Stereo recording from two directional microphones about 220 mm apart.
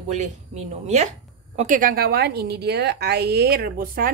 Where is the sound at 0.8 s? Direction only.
30° right (ahead or behind).